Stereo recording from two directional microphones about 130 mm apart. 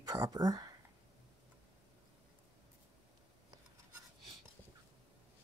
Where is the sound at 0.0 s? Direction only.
30° right (ahead or behind).